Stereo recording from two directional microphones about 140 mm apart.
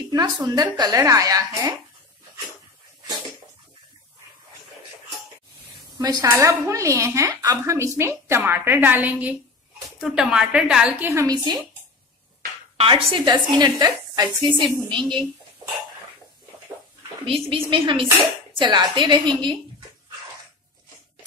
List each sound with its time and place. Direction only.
0.1 s speech: 30° right (ahead or behind)
5.9 s a woman's voice: 25° right (ahead or behind)
12.7 s a woman's voice: 40° right (ahead or behind)
17.3 s a woman's voice: 40° right (ahead or behind)